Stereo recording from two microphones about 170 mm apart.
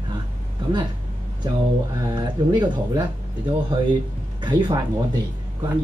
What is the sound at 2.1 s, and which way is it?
Speech, 25° right (ahead or behind).